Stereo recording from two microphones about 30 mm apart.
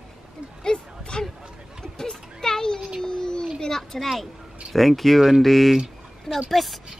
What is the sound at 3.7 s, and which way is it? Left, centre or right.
Speech, centre.